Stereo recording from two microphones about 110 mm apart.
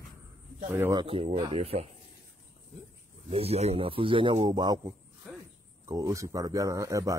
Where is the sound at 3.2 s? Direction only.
65° right (ahead or behind).